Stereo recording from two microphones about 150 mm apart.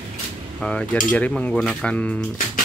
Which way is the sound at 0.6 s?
5° left (ahead or behind).